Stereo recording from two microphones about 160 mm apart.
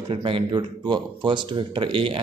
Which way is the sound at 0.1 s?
30° right (ahead or behind).